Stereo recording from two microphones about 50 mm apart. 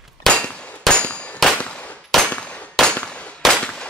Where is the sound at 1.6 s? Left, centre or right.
Left.